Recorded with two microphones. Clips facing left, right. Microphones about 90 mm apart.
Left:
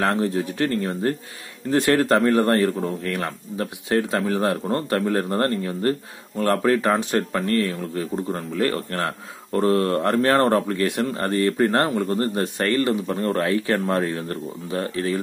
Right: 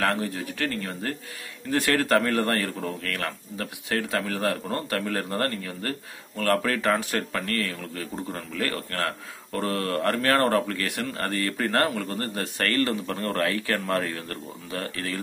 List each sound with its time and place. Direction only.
0.0 s a man's voice: 25° left (ahead or behind)